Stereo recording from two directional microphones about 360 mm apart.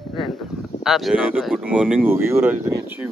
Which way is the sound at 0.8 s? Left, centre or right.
Centre.